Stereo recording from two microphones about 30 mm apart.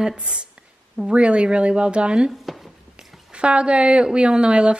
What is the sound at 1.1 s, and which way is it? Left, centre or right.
Speech, right.